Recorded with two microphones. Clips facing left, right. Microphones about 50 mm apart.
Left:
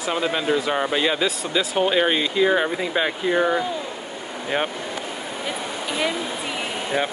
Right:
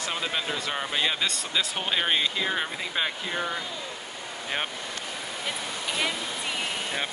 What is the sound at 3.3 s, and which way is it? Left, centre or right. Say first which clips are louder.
Speech: left 10 dB; left.